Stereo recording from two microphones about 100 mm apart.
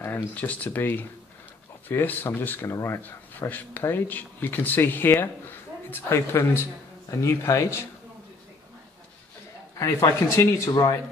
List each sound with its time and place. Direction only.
0.0 s speech: 20° left (ahead or behind)
9.8 s speech: 30° left (ahead or behind)